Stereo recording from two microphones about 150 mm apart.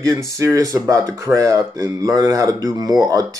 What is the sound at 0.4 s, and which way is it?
Speech, 20° right (ahead or behind).